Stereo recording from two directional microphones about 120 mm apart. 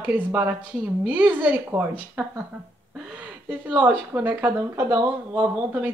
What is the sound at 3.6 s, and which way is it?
Speech, 15° right (ahead or behind).